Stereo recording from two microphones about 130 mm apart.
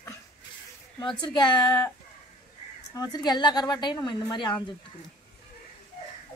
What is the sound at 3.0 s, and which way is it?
A woman's voice, 30° left (ahead or behind).